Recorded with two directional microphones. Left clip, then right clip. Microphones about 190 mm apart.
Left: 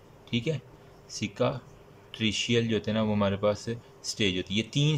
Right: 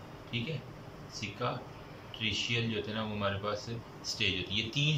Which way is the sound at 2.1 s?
50° left (ahead or behind).